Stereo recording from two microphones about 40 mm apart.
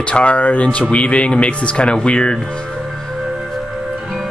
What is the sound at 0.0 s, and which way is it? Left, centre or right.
A man's voice, left.